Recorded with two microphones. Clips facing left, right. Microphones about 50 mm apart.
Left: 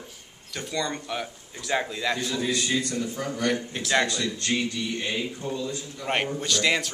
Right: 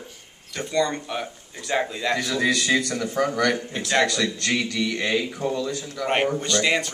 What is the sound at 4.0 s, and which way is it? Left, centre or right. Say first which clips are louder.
Speech: right 5 dB; right.